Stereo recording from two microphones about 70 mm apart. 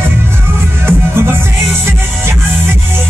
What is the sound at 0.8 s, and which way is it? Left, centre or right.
Music, right.